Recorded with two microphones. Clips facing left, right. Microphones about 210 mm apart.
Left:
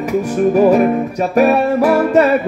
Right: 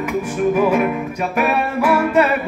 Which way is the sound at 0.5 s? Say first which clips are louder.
Left 6 dB; 40° left (ahead or behind).